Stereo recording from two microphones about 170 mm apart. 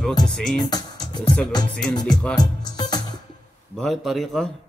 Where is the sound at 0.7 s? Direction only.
25° left (ahead or behind).